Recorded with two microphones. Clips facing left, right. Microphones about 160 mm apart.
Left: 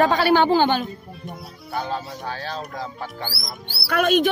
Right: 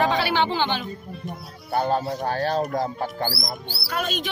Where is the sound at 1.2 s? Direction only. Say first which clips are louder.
Right 1 dB; centre (ahead or behind).